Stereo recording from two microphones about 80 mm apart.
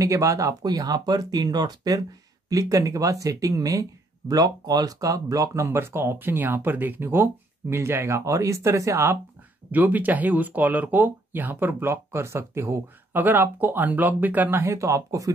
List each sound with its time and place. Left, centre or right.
0.0 s speech: right
9.7 s speech: right
13.1 s speech: right
14.6 s speech: right